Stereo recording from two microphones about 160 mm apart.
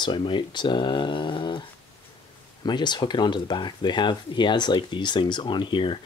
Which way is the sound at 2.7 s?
30° left (ahead or behind).